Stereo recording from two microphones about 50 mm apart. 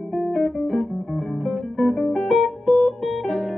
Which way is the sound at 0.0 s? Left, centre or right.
Centre.